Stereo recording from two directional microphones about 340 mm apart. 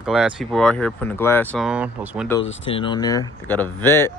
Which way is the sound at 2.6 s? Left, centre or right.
Centre.